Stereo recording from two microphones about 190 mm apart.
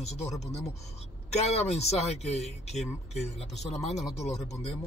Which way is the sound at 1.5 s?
35° left (ahead or behind).